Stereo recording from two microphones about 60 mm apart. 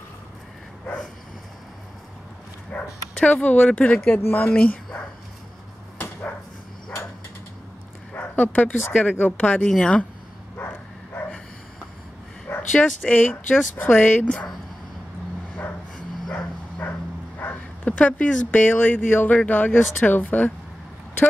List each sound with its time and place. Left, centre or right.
2.7 s bow-wow: centre
3.3 s speech: left
8.1 s speech: left
9.6 s speech: centre
12.4 s bow-wow: left
13.1 s speech: left
17.4 s speech: left